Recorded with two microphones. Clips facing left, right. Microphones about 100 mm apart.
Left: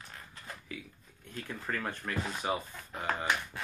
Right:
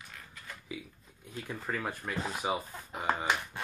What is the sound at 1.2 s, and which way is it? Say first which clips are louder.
Speech: right 1 dB; 10° right (ahead or behind).